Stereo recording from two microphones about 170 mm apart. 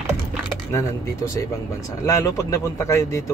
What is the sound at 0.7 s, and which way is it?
Speech, 15° left (ahead or behind).